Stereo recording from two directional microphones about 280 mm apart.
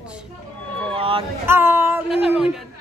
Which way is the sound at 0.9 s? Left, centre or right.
Centre.